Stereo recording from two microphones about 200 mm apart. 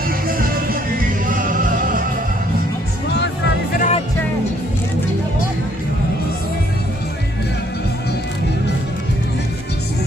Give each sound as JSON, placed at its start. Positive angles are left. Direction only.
{"t": 1.3, "sound": "music", "side_deg": -40}
{"t": 3.7, "sound": "music", "side_deg": 40}